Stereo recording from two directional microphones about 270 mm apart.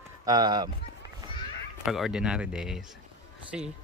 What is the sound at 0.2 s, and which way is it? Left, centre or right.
Speech, centre.